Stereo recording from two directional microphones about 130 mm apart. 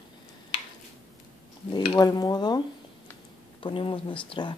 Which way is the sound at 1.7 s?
35° left (ahead or behind).